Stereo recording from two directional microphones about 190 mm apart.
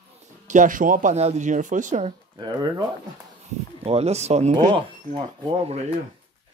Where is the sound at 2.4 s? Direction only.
20° right (ahead or behind).